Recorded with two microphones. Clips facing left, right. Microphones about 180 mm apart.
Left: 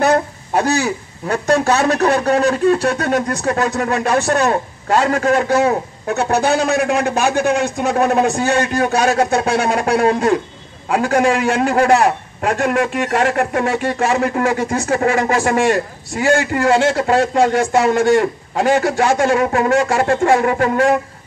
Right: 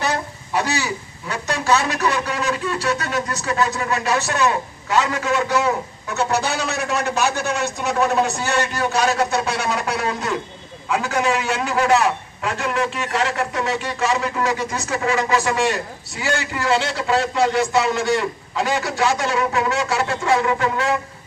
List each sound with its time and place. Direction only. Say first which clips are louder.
0.0 s a man's voice: left 9 dB; 55° left (ahead or behind)